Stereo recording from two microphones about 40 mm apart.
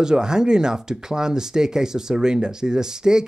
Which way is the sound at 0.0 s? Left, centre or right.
Centre.